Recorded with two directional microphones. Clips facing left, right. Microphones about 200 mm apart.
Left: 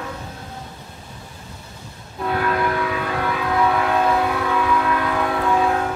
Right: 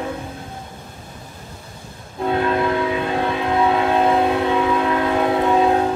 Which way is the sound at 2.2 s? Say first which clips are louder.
Right 3 dB; 25° right (ahead or behind).